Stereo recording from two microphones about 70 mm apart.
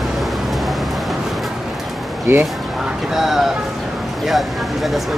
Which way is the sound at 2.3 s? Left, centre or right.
Right.